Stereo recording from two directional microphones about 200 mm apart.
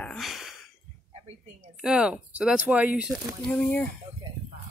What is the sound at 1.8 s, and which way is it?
Speech, 5° right (ahead or behind).